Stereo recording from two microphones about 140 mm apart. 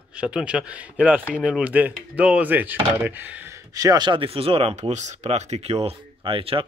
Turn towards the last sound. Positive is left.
turn(degrees=-40)  # may be behind; listen again after turning